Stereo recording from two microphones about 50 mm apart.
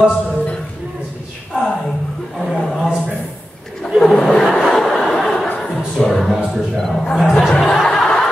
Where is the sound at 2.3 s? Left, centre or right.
Centre.